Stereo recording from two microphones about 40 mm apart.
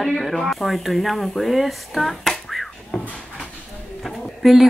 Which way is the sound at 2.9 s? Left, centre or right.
Left.